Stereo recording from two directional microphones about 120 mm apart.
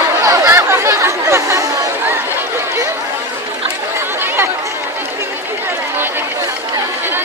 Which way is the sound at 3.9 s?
20° right (ahead or behind).